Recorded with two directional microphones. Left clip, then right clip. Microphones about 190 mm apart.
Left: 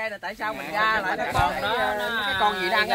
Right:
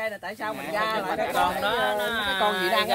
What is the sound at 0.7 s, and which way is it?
Speech, 15° right (ahead or behind).